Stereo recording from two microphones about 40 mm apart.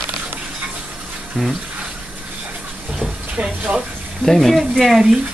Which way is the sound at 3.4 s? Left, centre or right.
Right.